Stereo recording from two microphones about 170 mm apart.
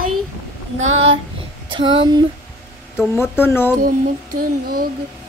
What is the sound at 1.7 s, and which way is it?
Speech, 30° right (ahead or behind).